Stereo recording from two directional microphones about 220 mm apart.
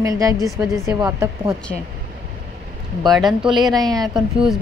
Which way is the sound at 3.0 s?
Centre (ahead or behind).